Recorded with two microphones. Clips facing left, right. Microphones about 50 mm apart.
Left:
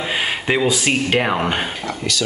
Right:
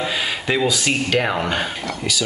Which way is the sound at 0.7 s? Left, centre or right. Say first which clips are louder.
Left 2 dB; left.